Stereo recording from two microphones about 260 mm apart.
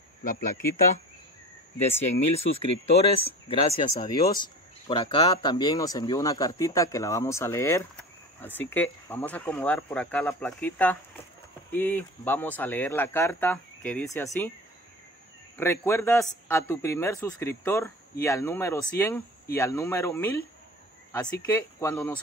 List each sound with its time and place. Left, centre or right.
1.8 s a man's voice: left
15.5 s a man's voice: centre